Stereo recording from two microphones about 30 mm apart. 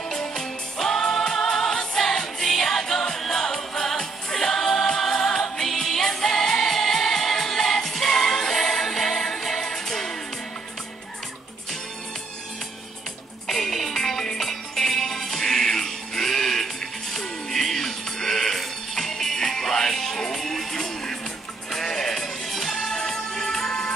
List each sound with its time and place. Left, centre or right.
0.1 s music: centre
13.5 s music: centre
22.7 s music: centre